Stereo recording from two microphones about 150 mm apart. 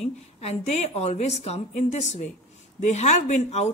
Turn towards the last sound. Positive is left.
turn(degrees=50)  # may be behind; listen again after turning